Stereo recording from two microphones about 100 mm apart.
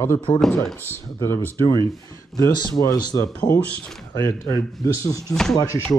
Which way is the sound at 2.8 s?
35° left (ahead or behind).